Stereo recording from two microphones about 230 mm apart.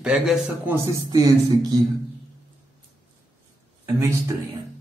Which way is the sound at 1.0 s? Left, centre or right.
Centre.